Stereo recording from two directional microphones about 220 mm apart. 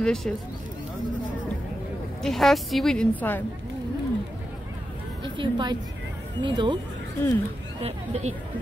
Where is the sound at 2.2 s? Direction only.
Centre (ahead or behind).